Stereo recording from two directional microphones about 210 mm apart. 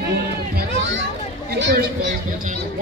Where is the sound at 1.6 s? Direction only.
45° right (ahead or behind).